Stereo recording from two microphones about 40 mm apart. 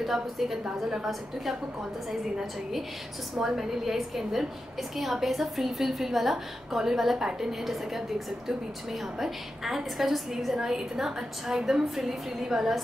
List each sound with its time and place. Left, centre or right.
0.0 s a woman's voice: centre